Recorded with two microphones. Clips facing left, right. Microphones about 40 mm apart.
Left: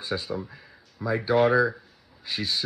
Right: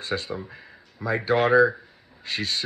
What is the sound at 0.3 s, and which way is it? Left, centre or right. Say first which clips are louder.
Speech: left 1 dB; right.